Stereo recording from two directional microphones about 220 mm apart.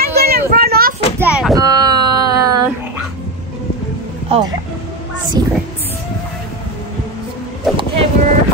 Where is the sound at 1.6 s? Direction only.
20° right (ahead or behind).